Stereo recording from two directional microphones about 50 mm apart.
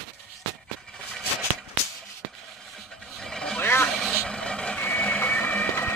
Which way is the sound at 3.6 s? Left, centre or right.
Left.